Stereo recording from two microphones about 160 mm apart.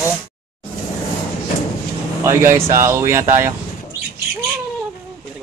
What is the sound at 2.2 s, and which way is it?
A man's voice, 15° right (ahead or behind).